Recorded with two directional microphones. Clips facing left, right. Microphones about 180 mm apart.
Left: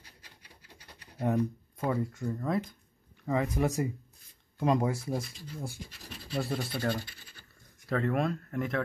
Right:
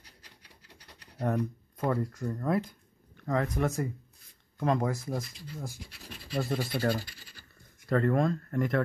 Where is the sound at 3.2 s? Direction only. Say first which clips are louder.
Even; 5° left (ahead or behind).